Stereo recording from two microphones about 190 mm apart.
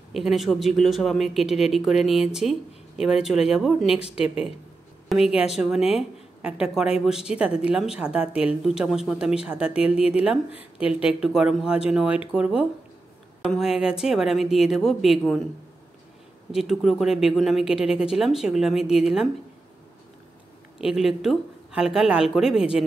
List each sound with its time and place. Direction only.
0.1 s speech: centre (ahead or behind)
3.9 s speech: 30° left (ahead or behind)
4.2 s speech: 5° right (ahead or behind)
16.5 s speech: centre (ahead or behind)
20.8 s speech: 5° right (ahead or behind)